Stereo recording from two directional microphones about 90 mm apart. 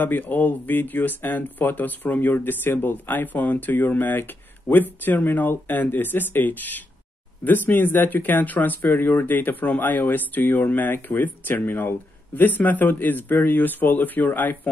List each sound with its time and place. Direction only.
0.0 s speech: 20° left (ahead or behind)